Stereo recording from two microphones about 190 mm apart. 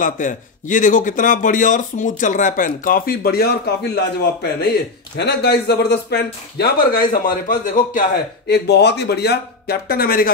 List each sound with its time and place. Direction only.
0.0 s speech: 45° left (ahead or behind)
8.5 s speech: 60° left (ahead or behind)